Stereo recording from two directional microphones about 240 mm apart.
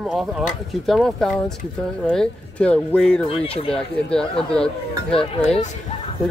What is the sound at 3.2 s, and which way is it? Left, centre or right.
Speech, left.